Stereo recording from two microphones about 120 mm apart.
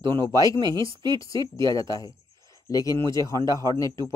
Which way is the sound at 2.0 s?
30° left (ahead or behind).